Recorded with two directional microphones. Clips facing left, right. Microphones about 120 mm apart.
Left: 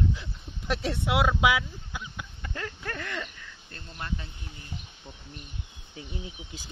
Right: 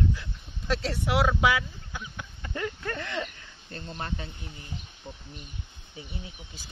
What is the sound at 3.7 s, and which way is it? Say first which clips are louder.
Speech: right 2 dB; 30° right (ahead or behind).